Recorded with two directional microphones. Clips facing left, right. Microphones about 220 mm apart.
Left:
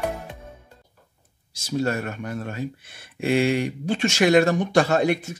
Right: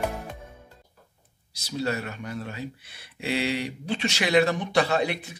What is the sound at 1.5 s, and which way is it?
Speech, 50° left (ahead or behind).